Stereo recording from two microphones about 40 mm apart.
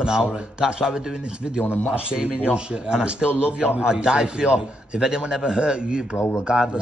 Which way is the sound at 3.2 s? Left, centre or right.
Left.